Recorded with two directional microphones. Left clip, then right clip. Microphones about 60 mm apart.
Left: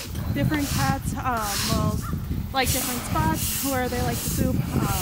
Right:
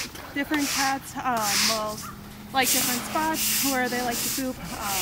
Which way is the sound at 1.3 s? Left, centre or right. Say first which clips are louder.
Right 2 dB; right.